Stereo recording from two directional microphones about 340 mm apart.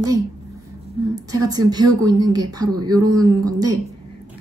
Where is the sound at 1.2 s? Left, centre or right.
Centre.